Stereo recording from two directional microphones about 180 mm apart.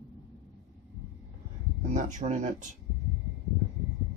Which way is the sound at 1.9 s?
40° right (ahead or behind).